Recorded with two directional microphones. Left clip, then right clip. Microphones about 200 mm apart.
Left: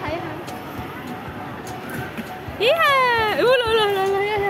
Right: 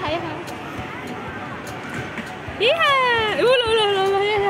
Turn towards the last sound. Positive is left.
turn(degrees=-15)  # may be behind; listen again after turning